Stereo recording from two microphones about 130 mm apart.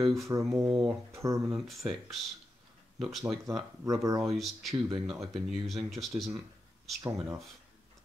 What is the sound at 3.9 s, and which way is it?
Speech, 25° right (ahead or behind).